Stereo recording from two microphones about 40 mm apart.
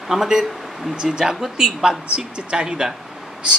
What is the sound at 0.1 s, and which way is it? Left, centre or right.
Speech, centre.